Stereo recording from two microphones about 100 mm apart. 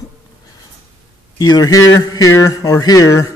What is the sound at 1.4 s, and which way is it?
A man's voice, 40° left (ahead or behind).